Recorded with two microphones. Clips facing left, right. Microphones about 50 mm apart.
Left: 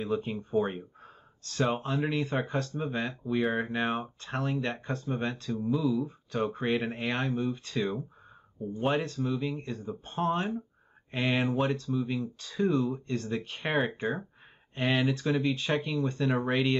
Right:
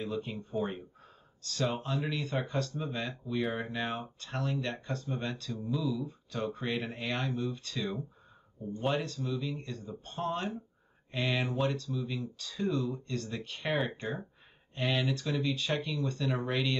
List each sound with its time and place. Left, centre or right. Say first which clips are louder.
0.0 s speech: left 5 dB; left
14.8 s speech: left 4 dB; left